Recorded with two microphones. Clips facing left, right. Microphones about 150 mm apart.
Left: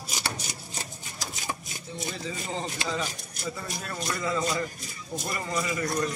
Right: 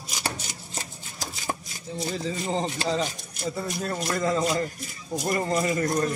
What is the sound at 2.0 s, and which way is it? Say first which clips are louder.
Speech: right 6 dB; 35° right (ahead or behind).